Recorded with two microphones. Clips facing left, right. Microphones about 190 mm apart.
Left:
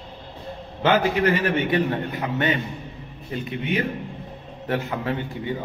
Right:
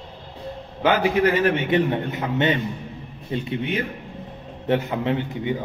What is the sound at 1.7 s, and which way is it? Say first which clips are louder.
A man's voice: right 2 dB; 25° right (ahead or behind).